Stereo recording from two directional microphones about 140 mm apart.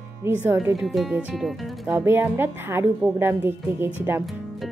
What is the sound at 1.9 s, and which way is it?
A woman's voice, 15° right (ahead or behind).